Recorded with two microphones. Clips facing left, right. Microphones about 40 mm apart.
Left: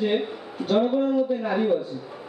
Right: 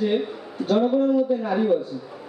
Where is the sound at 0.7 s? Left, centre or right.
Centre.